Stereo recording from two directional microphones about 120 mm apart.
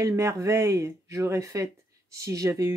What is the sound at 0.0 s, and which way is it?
Speech, 25° right (ahead or behind).